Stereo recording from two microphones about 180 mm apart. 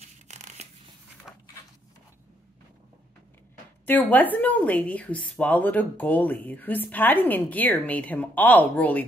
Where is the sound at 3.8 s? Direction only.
10° left (ahead or behind).